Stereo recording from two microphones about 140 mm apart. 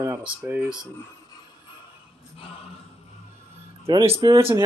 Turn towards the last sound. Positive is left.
turn(degrees=-45)  # may be behind; listen again after turning